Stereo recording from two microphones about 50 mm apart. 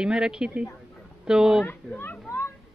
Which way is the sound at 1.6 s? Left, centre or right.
Left.